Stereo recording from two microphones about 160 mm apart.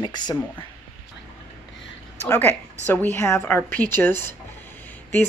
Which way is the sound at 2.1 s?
10° left (ahead or behind).